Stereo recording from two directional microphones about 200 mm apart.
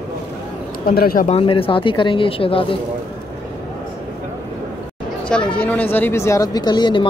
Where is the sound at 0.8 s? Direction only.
45° left (ahead or behind).